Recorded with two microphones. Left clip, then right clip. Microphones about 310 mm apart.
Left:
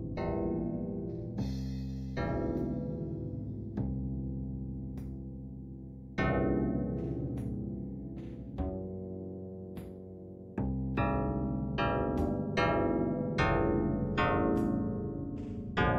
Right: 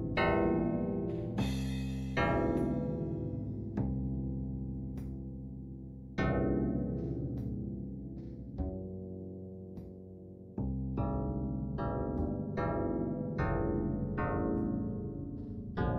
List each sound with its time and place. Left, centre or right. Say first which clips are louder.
0.0 s music: right 5 dB; right; by 4.0 s centre
6.1 s music: left 2 dB; centre
8.5 s music: left 4 dB; centre
10.5 s music: left 4 dB; left
11.1 s music: left 4 dB; left